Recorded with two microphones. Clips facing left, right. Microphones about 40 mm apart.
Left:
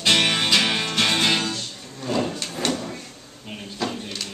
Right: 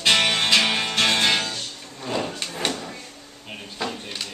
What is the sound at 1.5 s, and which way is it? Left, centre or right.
Drawer open or close, centre.